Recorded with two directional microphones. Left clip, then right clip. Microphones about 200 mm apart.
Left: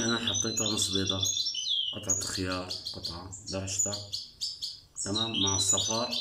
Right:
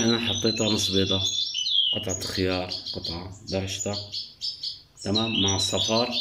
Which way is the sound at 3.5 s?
5° right (ahead or behind).